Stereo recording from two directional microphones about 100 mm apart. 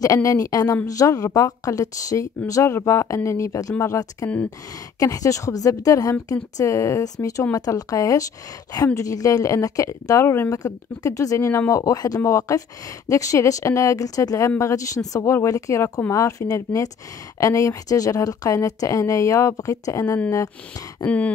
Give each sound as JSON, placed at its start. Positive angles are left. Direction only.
{"t": 0.0, "sound": "speech", "side_deg": 35}
{"t": 10.5, "sound": "speech", "side_deg": 35}
{"t": 11.8, "sound": "speech", "side_deg": 35}
{"t": 15.0, "sound": "throat clearing", "side_deg": 15}
{"t": 15.4, "sound": "speech", "side_deg": 35}
{"t": 21.0, "sound": "throat clearing", "side_deg": 10}